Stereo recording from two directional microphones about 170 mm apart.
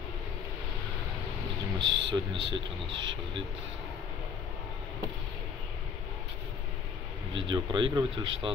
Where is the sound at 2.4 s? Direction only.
90° right.